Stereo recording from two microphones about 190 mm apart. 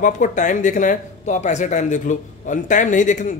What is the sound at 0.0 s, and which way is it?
Speech, 45° left (ahead or behind).